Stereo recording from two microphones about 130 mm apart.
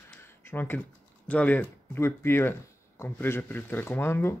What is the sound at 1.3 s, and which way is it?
Speech, 10° left (ahead or behind).